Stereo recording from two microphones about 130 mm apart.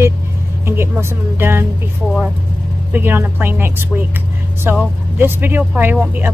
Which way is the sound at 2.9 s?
15° right (ahead or behind).